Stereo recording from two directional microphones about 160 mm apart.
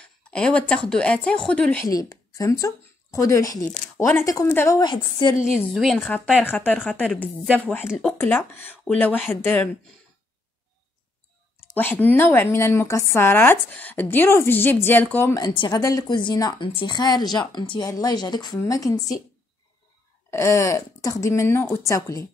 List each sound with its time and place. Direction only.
0.0 s a sound: 5° left (ahead or behind)
0.8 s a woman's voice: 5° left (ahead or behind)
1.9 s a woman's voice: 20° left (ahead or behind)
5.7 s a woman's voice: centre (ahead or behind)
6.8 s speech: 5° right (ahead or behind)
7.1 s a woman's voice: 10° left (ahead or behind)
11.7 s a woman's voice: 10° left (ahead or behind)
15.3 s a woman's voice: 30° left (ahead or behind)
20.2 s a woman's voice: 15° left (ahead or behind)